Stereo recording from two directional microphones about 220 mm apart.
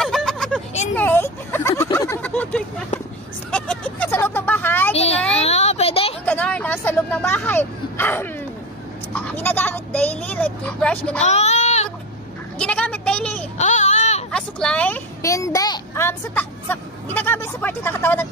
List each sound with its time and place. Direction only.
0.0 s vehicle: centre (ahead or behind)
0.9 s a sound: 10° left (ahead or behind)
4.9 s a sound: 30° left (ahead or behind)
6.2 s vehicle: 5° left (ahead or behind)
9.1 s a child's voice: 10° left (ahead or behind)
11.2 s a sound: 30° left (ahead or behind)
12.5 s vehicle: 5° left (ahead or behind)
13.6 s baby cry: 30° left (ahead or behind)
14.3 s a child's voice: 5° left (ahead or behind)